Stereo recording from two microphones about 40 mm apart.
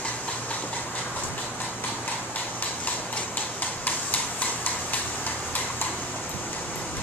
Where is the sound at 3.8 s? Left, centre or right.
Left.